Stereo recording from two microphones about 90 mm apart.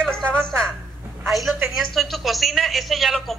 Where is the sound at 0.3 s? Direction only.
10° left (ahead or behind).